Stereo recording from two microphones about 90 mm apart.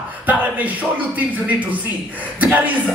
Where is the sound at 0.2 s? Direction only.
20° right (ahead or behind).